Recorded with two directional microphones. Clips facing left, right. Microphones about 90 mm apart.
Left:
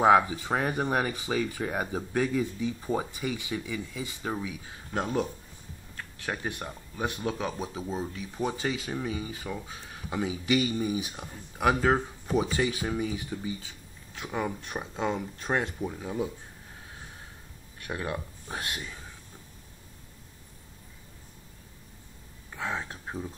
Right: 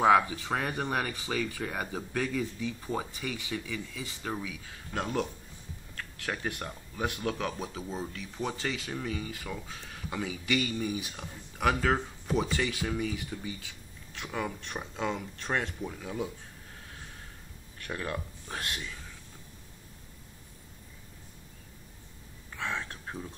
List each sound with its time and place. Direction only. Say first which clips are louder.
0.0 s speech: left 2 dB; 10° left (ahead or behind)
12.5 s speech: left 3 dB; 20° left (ahead or behind)
14.6 s speech: left 3 dB; 10° left (ahead or behind)
16.0 s speech: left 3 dB; 25° left (ahead or behind)
17.7 s speech: left 2 dB; 15° left (ahead or behind)
22.6 s speech: left 2 dB; 15° left (ahead or behind)